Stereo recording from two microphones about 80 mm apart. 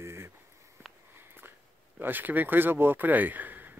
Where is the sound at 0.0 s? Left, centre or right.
Right.